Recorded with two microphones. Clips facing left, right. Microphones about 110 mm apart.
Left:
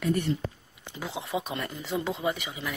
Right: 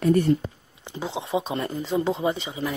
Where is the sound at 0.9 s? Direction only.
25° right (ahead or behind).